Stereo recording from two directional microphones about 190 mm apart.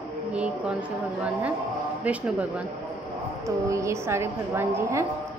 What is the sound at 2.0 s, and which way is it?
Speech, 5° right (ahead or behind).